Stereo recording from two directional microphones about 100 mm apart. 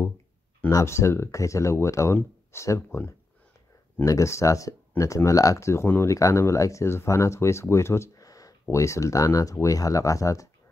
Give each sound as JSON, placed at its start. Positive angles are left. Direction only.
{"t": 0.7, "sound": "speech", "side_deg": 30}
{"t": 4.0, "sound": "speech", "side_deg": 30}